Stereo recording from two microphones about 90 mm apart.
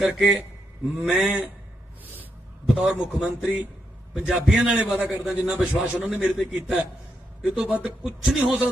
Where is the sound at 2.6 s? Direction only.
10° right (ahead or behind).